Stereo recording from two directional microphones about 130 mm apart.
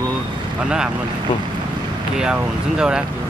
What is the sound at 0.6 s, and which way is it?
Speech, 5° right (ahead or behind).